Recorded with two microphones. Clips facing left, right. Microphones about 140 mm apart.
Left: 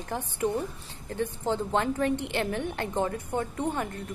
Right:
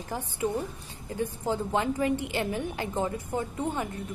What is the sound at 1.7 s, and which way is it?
Speech, 60° left (ahead or behind).